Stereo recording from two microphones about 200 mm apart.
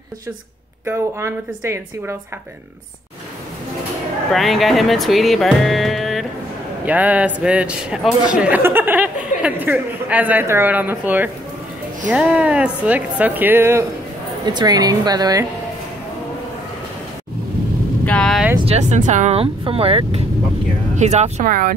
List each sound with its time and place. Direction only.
0.8 s a man's voice: 10° right (ahead or behind)
4.3 s a man's voice: centre (ahead or behind); by 15.4 s 20° right (ahead or behind)
18.0 s vehicle: 5° left (ahead or behind)
18.7 s speech: 35° right (ahead or behind)